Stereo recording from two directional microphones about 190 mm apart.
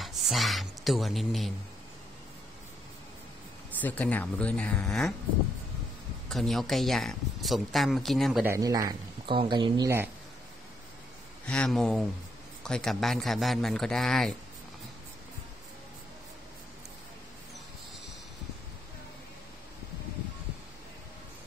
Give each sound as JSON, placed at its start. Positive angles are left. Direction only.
{"t": 0.0, "sound": "speech", "side_deg": 0}
{"t": 3.8, "sound": "speech", "side_deg": 10}
{"t": 6.2, "sound": "speech", "side_deg": 0}
{"t": 8.5, "sound": "speech", "side_deg": -20}
{"t": 11.4, "sound": "speech", "side_deg": 5}